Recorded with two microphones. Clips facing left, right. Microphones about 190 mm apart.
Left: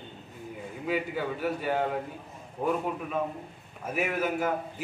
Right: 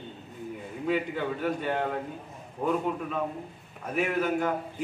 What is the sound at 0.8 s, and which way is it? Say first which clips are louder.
A man's voice: right 2 dB; 5° left (ahead or behind).